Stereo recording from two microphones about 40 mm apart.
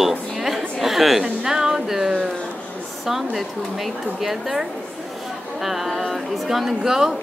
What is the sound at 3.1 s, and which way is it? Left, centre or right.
A woman's voice, centre.